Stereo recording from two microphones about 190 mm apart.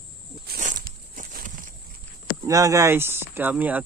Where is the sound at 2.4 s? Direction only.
15° right (ahead or behind).